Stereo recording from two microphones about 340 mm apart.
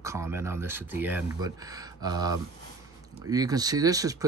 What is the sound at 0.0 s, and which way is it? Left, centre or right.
Speech, centre.